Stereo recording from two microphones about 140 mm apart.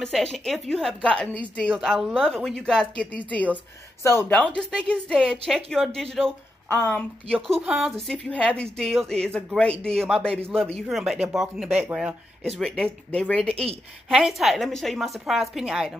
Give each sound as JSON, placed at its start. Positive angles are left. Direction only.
{"t": 0.0, "sound": "a woman's voice", "side_deg": 5}
{"t": 4.0, "sound": "speech", "side_deg": 20}
{"t": 4.6, "sound": "a woman's voice", "side_deg": 0}
{"t": 6.7, "sound": "a woman's voice", "side_deg": 15}
{"t": 7.6, "sound": "a woman's voice", "side_deg": -5}
{"t": 8.5, "sound": "a woman's voice", "side_deg": 5}
{"t": 12.5, "sound": "a woman's voice", "side_deg": 5}